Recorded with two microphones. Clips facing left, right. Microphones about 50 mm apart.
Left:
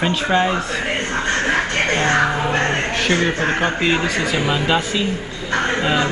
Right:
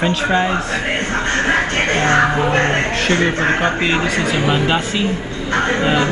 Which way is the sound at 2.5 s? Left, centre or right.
Right.